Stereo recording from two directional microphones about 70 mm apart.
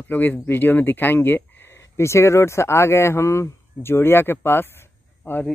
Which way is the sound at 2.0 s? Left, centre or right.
Left.